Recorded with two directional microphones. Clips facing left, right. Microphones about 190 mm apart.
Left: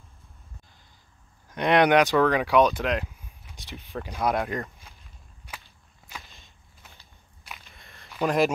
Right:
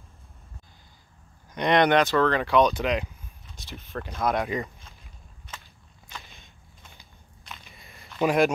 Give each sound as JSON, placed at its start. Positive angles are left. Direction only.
{"t": 1.5, "sound": "speech", "side_deg": 5}
{"t": 3.4, "sound": "a sound", "side_deg": 15}
{"t": 3.8, "sound": "speech", "side_deg": 15}
{"t": 4.4, "sound": "speech", "side_deg": 0}
{"t": 5.5, "sound": "whip", "side_deg": 10}
{"t": 6.0, "sound": "a sound", "side_deg": 5}